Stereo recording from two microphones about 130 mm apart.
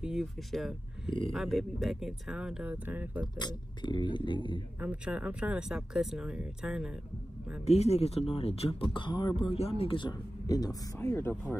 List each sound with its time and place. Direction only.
0.0 s speech: 5° right (ahead or behind)
3.3 s speech: 35° left (ahead or behind)
4.7 s speech: 10° right (ahead or behind)
7.6 s speech: 55° left (ahead or behind); by 9.3 s 35° left (ahead or behind)
9.4 s speech: 50° left (ahead or behind); by 10.8 s 30° left (ahead or behind)
11.0 s speech: 15° left (ahead or behind)